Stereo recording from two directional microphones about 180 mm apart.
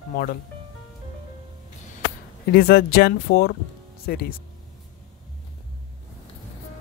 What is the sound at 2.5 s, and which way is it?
Speech, 60° left (ahead or behind).